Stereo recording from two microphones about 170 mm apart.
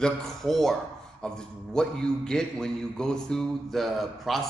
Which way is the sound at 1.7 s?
5° left (ahead or behind).